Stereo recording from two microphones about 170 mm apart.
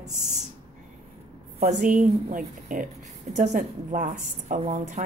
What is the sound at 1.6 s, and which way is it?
A woman's voice, 45° right (ahead or behind).